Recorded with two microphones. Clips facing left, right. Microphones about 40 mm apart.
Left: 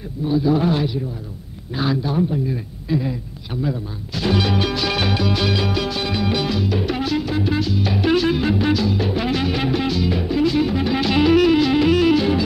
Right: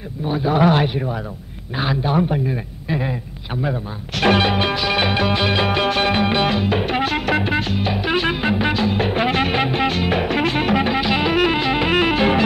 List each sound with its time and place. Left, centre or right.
0.2 s music: right
0.6 s speech: right
1.8 s music: right
2.1 s speech: right
2.4 s music: right
4.4 s music: right
4.7 s music: right
8.1 s music: right
10.2 s music: right
10.5 s music: right
11.0 s music: centre; by 12.4 s right